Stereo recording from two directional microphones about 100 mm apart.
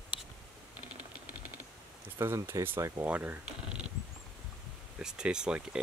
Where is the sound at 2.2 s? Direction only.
25° right (ahead or behind).